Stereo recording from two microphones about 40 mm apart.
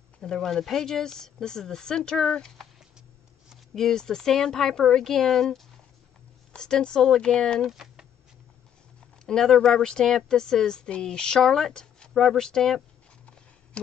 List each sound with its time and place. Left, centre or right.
0.2 s speech: centre
3.7 s speech: centre
6.5 s speech: left
7.7 s a sound: centre
9.2 s speech: centre